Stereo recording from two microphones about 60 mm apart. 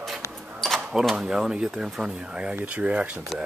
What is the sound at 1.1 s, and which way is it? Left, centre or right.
Speech, centre.